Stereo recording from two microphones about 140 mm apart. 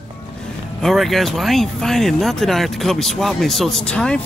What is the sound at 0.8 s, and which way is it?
Speech, centre (ahead or behind).